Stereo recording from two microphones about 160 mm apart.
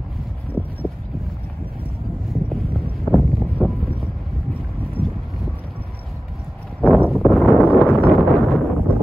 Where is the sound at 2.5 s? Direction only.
5° left (ahead or behind).